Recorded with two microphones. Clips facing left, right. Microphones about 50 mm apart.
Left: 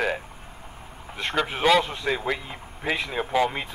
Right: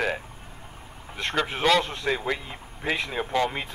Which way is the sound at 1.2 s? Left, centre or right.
Centre.